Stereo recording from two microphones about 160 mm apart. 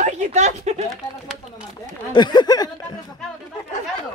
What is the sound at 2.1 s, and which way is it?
Speech, 25° left (ahead or behind).